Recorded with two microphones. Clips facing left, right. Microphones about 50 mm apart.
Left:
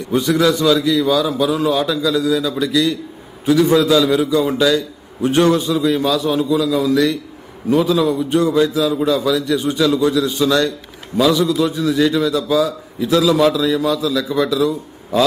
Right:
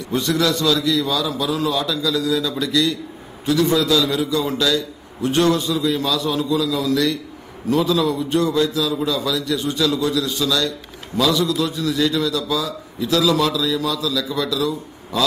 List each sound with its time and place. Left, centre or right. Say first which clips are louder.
0.1 s a man's voice: left 4 dB; centre; by 10.7 s left
11.1 s a man's voice: left 4 dB; centre